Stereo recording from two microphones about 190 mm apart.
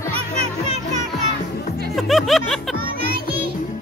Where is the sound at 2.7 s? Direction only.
55° right (ahead or behind).